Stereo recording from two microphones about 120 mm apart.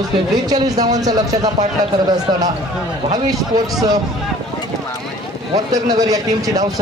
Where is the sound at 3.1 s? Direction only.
35° right (ahead or behind).